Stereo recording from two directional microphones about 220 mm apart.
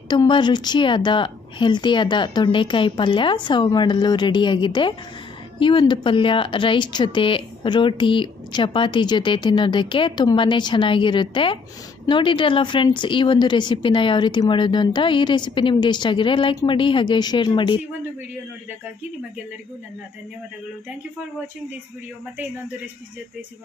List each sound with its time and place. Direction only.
0.1 s speech: 20° left (ahead or behind)